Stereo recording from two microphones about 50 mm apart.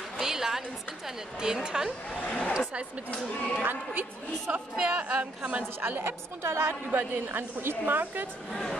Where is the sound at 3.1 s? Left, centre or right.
Left.